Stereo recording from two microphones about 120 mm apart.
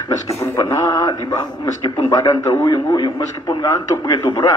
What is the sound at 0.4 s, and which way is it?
A man's voice, 25° left (ahead or behind).